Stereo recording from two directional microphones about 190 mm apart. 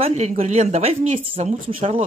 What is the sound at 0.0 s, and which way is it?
Speech, 35° right (ahead or behind).